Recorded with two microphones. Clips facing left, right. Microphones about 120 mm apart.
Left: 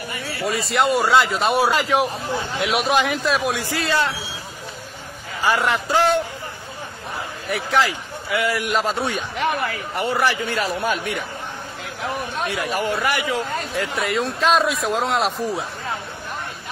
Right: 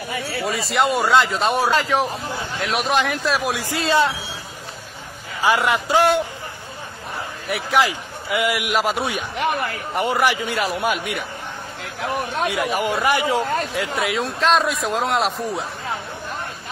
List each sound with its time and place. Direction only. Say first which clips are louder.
0.4 s speech: even; centre (ahead or behind)
3.6 s a man's voice: right 3 dB; 20° right (ahead or behind)
5.4 s a man's voice: right 1 dB; 10° right (ahead or behind)
7.7 s a man's voice: right 1 dB; 15° right (ahead or behind)
12.4 s a man's voice: even; 15° right (ahead or behind)
13.7 s speech: even; centre (ahead or behind)